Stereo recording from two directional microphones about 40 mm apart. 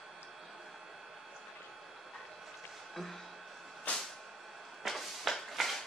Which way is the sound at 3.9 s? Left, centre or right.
Left.